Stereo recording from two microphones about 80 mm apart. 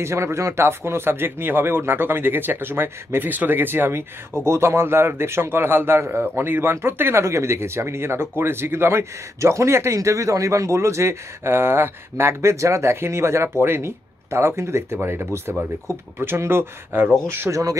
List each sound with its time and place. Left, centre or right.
0.0 s a man's voice: right